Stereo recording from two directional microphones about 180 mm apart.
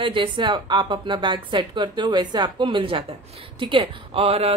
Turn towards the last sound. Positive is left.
turn(degrees=-35)  # may be behind; listen again after turning